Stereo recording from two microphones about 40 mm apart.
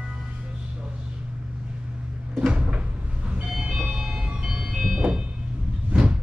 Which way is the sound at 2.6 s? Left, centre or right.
Right.